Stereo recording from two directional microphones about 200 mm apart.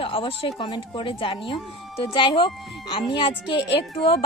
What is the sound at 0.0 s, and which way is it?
Speech, 25° left (ahead or behind).